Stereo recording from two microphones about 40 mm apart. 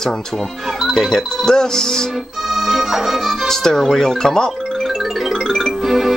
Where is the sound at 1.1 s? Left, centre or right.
Centre.